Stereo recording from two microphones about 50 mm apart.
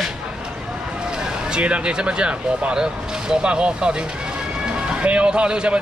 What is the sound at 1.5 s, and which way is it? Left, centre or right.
Speech, right.